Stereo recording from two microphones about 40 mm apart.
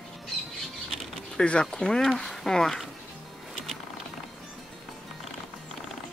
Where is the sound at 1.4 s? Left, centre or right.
Left.